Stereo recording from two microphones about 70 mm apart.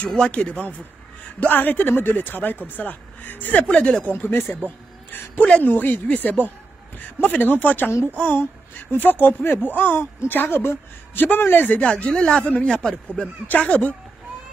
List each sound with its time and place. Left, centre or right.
0.3 s speech: centre
4.6 s a sound: left
5.4 s speech: left
11.8 s speech: centre
13.5 s speech: centre